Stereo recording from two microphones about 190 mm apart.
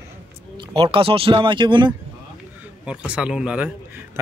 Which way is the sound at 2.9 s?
5° right (ahead or behind).